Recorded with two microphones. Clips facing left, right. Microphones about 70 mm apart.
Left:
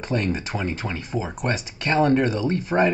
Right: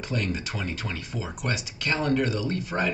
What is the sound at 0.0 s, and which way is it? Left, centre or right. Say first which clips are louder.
Speech: left 5 dB; left.